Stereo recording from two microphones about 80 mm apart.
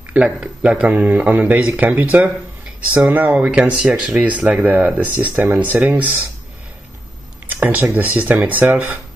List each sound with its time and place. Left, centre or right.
0.1 s speech: centre
7.4 s speech: right